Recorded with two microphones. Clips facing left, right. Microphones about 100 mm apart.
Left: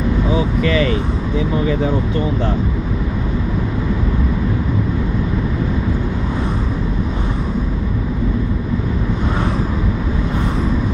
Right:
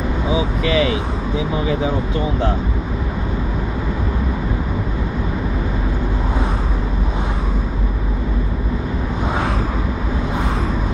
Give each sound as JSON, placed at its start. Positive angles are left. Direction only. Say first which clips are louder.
{"t": 0.7, "sound": "speech", "louder": "right 1 dB", "side_deg": 50}